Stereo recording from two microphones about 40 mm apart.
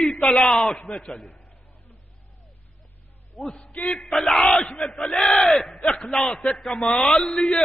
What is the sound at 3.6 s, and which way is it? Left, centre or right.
Speech, left.